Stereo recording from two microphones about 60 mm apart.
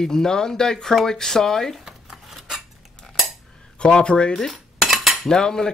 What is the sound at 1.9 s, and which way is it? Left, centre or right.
Keys jangling, centre.